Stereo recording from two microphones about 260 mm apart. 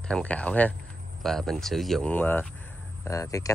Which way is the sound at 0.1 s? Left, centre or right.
Centre.